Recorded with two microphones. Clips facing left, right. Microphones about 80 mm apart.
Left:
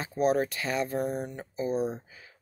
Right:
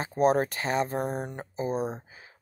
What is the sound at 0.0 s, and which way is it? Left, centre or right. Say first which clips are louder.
Speech: right 2 dB; right.